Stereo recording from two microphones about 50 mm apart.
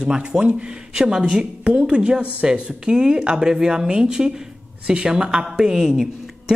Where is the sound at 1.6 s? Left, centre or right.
Right.